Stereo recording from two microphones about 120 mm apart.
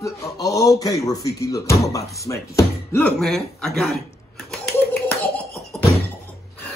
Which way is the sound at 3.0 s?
10° left (ahead or behind).